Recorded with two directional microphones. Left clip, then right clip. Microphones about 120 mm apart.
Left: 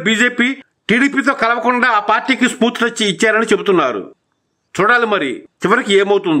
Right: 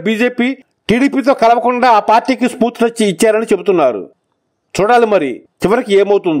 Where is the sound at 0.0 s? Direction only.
40° right (ahead or behind).